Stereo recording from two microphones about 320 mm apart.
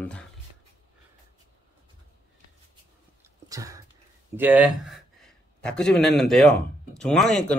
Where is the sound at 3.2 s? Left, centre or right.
Centre.